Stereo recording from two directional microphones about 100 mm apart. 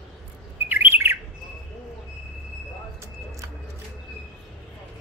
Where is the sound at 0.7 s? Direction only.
20° right (ahead or behind).